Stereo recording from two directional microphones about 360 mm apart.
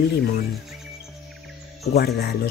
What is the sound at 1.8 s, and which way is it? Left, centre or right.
Speech, left.